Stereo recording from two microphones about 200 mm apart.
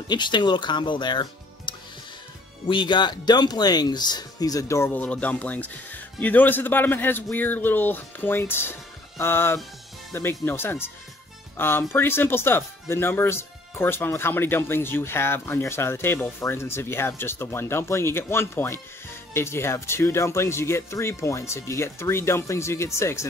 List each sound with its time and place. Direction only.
0.1 s speech: 20° left (ahead or behind)